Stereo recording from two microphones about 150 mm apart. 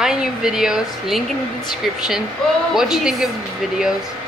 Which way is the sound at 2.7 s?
5° right (ahead or behind).